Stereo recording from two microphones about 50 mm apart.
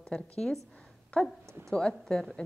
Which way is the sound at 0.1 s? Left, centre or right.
Centre.